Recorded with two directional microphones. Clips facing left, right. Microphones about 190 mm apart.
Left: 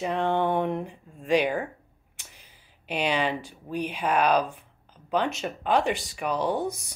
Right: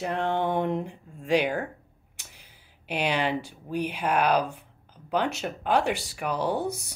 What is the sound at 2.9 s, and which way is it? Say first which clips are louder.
Speech: even; 10° right (ahead or behind).